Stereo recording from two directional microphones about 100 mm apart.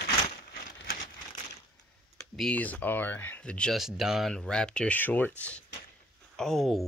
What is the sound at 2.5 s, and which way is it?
Speech, 15° left (ahead or behind).